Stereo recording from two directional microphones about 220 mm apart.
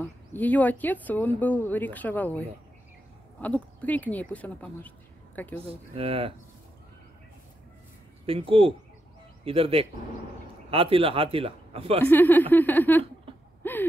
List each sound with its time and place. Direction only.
0.0 s speech: 5° left (ahead or behind)
5.6 s speech: 25° right (ahead or behind)
8.3 s speech: 25° right (ahead or behind)
12.0 s speech: 10° left (ahead or behind)
13.6 s a sound: 10° left (ahead or behind)